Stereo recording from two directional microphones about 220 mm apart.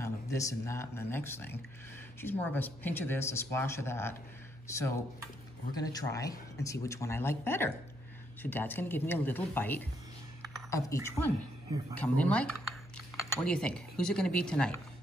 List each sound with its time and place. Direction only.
0.0 s speech: 15° left (ahead or behind)